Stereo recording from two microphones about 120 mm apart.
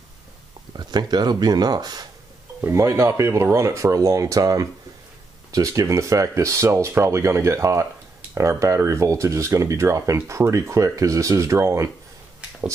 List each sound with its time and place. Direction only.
0.7 s speech: 35° right (ahead or behind)